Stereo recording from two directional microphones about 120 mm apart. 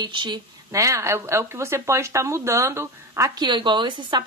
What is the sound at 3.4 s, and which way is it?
Speech, 40° right (ahead or behind).